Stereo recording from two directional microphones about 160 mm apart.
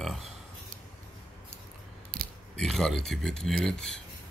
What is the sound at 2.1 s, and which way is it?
Scissors, 60° right (ahead or behind).